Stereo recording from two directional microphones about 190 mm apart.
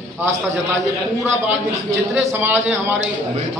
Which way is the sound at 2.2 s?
10° right (ahead or behind).